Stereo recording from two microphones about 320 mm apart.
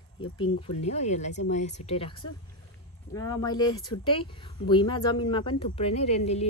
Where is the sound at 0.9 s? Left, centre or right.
Left.